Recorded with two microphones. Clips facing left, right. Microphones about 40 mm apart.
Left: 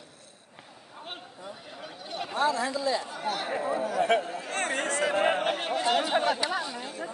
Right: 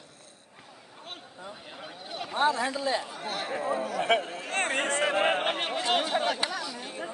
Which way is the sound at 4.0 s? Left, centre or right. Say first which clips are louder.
Left 1 dB; right.